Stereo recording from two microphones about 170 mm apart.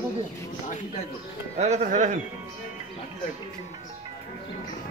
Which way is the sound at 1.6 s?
40° right (ahead or behind).